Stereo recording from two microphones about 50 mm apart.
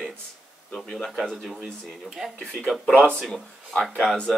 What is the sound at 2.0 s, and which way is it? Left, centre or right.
Speech, centre.